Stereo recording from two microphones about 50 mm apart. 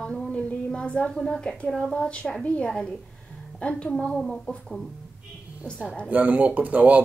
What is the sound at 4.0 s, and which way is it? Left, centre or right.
Speech, centre.